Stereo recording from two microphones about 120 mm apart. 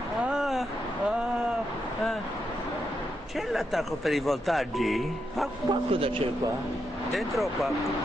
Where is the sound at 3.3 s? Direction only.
Centre (ahead or behind).